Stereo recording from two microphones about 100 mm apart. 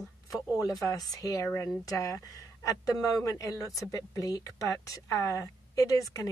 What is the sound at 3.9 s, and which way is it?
Speech, 35° left (ahead or behind).